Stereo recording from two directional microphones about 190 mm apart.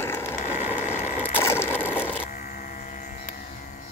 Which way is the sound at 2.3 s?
45° left (ahead or behind).